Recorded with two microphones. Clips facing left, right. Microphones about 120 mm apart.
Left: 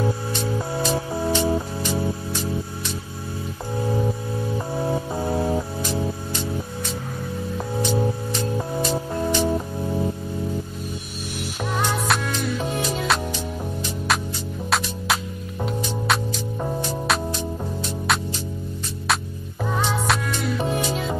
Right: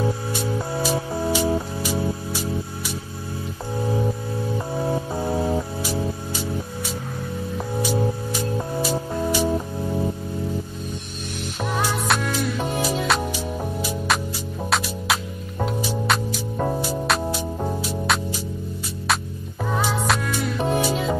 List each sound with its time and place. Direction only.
0.0 s music: centre (ahead or behind)
4.7 s music: centre (ahead or behind)
7.5 s music: 5° right (ahead or behind)
11.8 s music: 5° right (ahead or behind)
15.6 s music: centre (ahead or behind)
19.6 s music: 5° right (ahead or behind)